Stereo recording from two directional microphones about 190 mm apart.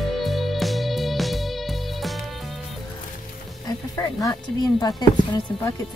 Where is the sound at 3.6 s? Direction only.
20° left (ahead or behind).